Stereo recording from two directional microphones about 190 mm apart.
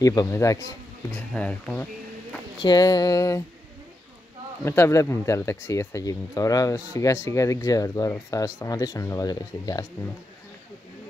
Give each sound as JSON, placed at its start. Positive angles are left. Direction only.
{"t": 0.0, "sound": "speech", "side_deg": 20}
{"t": 1.3, "sound": "speech", "side_deg": 5}
{"t": 2.6, "sound": "a sound", "side_deg": 20}
{"t": 4.6, "sound": "speech", "side_deg": 15}